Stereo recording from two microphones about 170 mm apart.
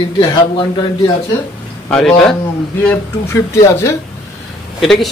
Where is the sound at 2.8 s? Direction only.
15° left (ahead or behind).